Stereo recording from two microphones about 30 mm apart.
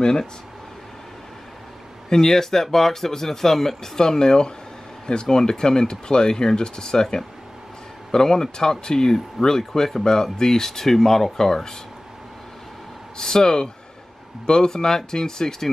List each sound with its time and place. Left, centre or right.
2.0 s speech: centre
9.7 s speech: centre
10.0 s speech: centre
13.2 s speech: left